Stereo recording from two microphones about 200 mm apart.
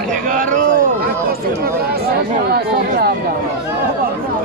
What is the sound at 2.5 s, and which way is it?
Chatter, 50° right (ahead or behind).